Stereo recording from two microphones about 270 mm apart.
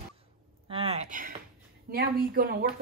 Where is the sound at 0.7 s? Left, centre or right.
Right.